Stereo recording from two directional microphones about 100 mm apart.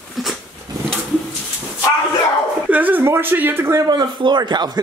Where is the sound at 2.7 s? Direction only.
15° right (ahead or behind).